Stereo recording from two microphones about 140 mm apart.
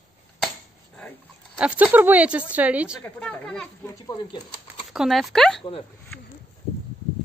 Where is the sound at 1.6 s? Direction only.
10° right (ahead or behind).